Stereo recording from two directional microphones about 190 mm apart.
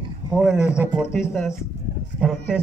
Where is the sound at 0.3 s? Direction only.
5° right (ahead or behind).